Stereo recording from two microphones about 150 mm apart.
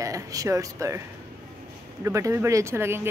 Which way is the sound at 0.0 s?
20° right (ahead or behind).